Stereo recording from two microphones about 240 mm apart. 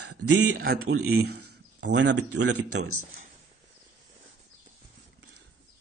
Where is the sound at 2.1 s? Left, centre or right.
Right.